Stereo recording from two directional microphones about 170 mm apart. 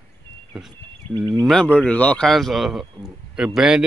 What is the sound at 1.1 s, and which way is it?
Speech, 20° right (ahead or behind).